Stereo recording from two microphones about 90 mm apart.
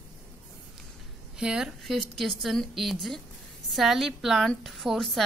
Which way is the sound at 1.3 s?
5° right (ahead or behind).